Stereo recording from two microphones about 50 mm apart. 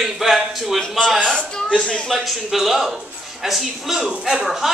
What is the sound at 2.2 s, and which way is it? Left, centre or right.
A man's voice, centre.